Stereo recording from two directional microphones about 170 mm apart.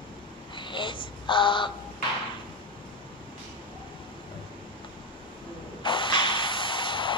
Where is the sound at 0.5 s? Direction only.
30° left (ahead or behind).